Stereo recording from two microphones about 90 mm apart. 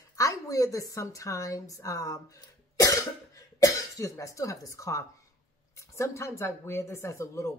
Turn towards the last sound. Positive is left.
turn(degrees=30)  # may be behind; listen again after turning